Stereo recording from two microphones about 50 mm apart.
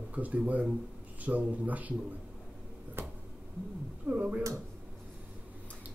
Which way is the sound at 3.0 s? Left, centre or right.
Right.